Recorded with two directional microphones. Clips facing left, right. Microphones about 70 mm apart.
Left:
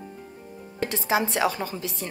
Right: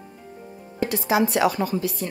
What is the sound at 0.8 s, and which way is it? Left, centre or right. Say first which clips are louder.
Speech: right 3 dB; left.